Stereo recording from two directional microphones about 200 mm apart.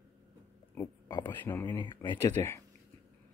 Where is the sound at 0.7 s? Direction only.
15° left (ahead or behind).